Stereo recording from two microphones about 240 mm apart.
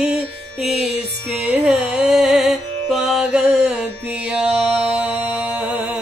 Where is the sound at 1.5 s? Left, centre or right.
Centre.